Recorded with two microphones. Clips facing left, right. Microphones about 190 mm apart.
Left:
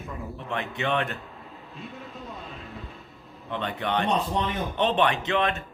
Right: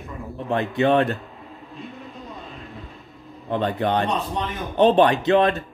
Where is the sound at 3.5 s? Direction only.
35° right (ahead or behind).